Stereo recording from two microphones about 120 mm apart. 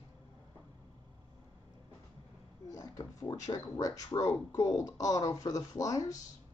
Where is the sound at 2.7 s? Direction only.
30° left (ahead or behind).